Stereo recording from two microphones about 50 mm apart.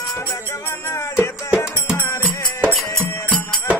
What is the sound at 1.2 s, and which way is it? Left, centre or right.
Music, left.